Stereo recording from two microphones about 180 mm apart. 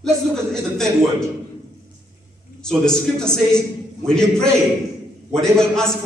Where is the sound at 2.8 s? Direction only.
5° left (ahead or behind).